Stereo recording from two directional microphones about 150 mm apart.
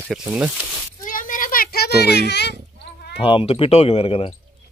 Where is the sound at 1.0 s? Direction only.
60° left (ahead or behind); by 2.4 s 90° left.